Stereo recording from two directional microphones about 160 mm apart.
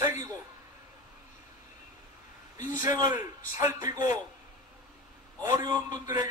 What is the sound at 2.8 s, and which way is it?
A man's voice, 25° right (ahead or behind).